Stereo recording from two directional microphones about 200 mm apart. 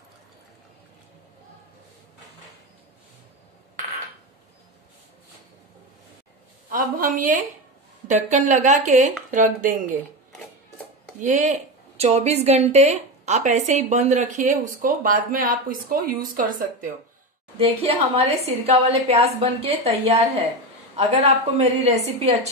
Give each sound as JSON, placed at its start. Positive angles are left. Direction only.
{"t": 6.7, "sound": "a woman's voice", "side_deg": -45}
{"t": 11.1, "sound": "a woman's voice", "side_deg": -40}
{"t": 17.6, "sound": "a woman's voice", "side_deg": -30}
{"t": 21.5, "sound": "a woman's voice", "side_deg": -30}